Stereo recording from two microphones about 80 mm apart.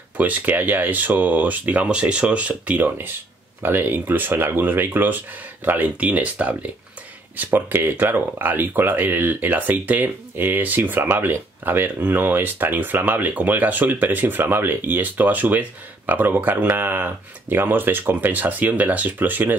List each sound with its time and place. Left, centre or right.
0.2 s speech: right